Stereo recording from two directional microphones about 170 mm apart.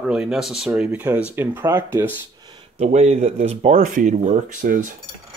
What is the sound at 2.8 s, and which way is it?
Speech, 40° right (ahead or behind).